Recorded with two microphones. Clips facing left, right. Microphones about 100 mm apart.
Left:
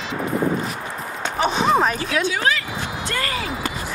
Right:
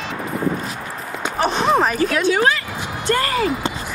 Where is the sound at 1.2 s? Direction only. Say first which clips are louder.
Right 1 dB; centre (ahead or behind).